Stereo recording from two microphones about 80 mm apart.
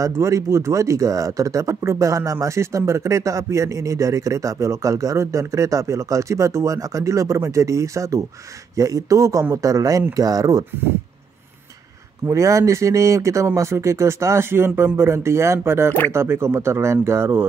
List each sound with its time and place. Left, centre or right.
0.0 s a man's voice: right
12.3 s speech: right